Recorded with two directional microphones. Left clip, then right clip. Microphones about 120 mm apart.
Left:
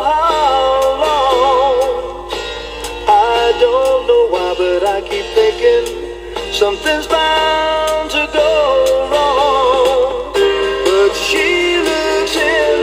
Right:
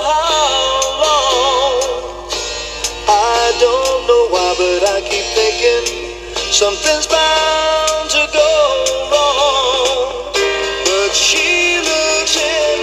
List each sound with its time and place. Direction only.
0.1 s music: 20° right (ahead or behind)
3.1 s music: 35° right (ahead or behind)
8.4 s music: 20° right (ahead or behind)